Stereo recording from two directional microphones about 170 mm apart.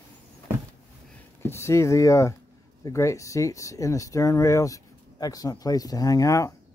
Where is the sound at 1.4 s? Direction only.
15° left (ahead or behind).